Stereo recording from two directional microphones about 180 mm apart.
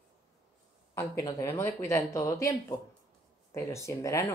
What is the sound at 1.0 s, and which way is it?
A woman's voice, 15° left (ahead or behind).